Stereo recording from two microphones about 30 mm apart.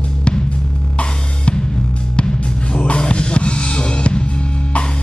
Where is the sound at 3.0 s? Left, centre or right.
Left.